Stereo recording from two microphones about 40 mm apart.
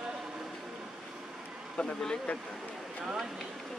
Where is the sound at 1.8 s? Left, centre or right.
Centre.